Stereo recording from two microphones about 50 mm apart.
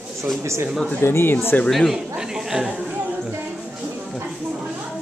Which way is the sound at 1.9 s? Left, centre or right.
Centre.